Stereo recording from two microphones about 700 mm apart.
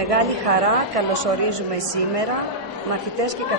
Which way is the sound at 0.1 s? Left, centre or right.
Right.